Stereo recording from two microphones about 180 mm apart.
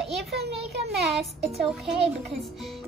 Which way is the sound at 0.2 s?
65° right (ahead or behind).